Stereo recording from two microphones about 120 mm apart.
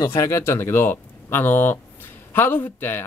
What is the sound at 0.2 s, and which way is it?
Speech, 20° left (ahead or behind).